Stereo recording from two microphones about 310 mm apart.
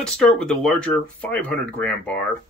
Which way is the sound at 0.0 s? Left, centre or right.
Centre.